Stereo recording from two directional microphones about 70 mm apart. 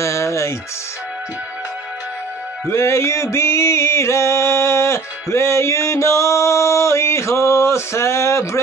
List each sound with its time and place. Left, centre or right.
0.0 s music: left
2.7 s mantra: left